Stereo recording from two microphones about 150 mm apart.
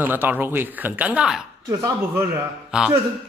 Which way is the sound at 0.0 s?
15° right (ahead or behind).